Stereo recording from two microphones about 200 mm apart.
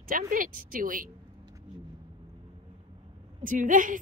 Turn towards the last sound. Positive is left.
turn(degrees=-40)  # may be behind; listen again after turning